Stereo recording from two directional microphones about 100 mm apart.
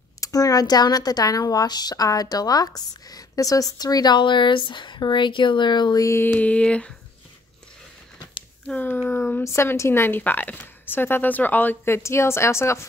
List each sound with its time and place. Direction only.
0.2 s a woman's voice: 35° left (ahead or behind)
6.0 s a sound: 25° left (ahead or behind)
8.6 s speech: 15° left (ahead or behind)